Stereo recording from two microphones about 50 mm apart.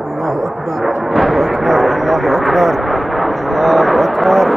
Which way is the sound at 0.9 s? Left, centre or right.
Centre.